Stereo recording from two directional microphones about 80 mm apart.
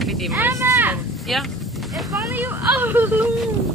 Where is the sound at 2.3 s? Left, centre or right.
Right.